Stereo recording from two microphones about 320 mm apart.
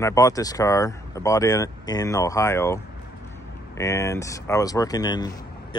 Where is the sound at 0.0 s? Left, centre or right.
Centre.